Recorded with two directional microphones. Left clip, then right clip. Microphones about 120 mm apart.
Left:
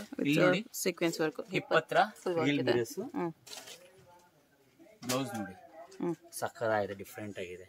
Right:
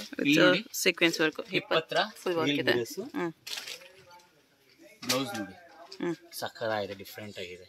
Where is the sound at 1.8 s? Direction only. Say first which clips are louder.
Left 3 dB; 30° left (ahead or behind).